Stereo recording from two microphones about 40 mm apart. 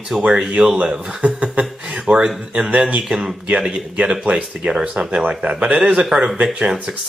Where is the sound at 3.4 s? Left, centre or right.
Right.